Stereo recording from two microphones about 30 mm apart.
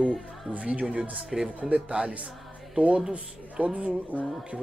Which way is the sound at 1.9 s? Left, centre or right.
Right.